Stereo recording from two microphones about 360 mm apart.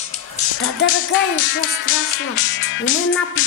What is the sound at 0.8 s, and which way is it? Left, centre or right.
Music, left.